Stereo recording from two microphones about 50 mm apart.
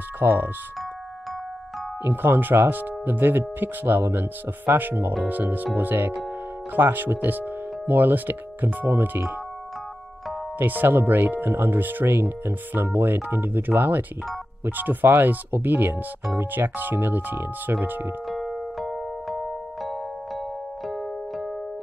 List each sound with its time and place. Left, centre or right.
0.2 s speech: right
2.0 s speech: right
10.6 s speech: right
18.3 s music: centre